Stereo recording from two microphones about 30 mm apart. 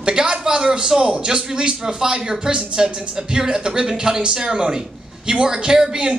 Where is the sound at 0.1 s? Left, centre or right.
Right.